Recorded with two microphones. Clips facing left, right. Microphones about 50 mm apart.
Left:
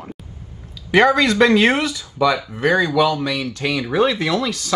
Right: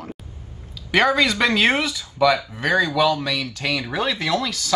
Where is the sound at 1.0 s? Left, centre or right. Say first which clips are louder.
Left 4 dB; left.